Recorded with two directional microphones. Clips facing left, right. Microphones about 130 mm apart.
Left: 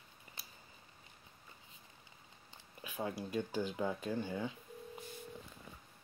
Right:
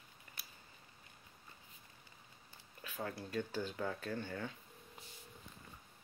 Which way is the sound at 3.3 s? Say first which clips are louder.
Left 2 dB; 15° left (ahead or behind).